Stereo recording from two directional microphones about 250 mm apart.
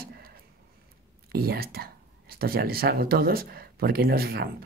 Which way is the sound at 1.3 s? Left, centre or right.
Right.